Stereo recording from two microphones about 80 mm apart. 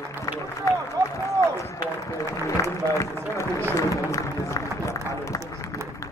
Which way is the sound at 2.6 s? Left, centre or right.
Left.